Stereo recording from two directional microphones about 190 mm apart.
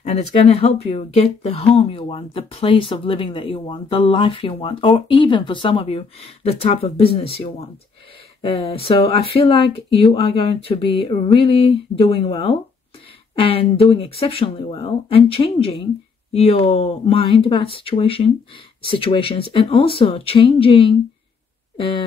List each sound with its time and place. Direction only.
0.0 s speech: 35° left (ahead or behind)